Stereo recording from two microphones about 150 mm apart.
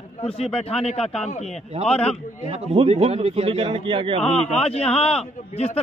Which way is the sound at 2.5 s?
40° right (ahead or behind).